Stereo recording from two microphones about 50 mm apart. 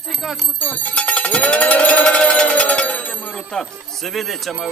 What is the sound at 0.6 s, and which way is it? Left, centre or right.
Speech, left.